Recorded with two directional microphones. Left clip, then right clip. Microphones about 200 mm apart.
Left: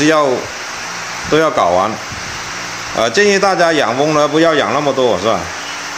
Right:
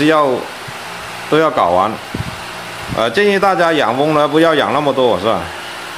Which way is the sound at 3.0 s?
Centre (ahead or behind).